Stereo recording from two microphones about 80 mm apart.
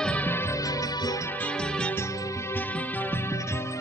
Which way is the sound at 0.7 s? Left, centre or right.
Left.